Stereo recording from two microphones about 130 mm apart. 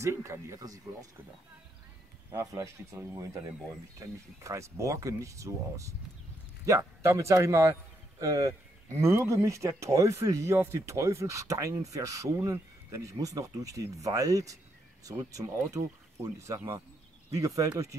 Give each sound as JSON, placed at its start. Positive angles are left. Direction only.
{"t": 0.0, "sound": "speech", "side_deg": -20}
{"t": 2.3, "sound": "speech", "side_deg": -25}